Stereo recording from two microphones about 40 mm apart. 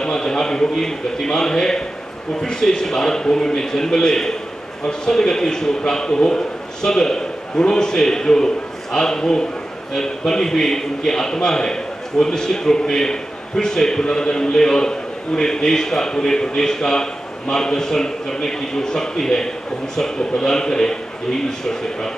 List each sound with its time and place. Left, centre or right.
0.0 s a man's voice: centre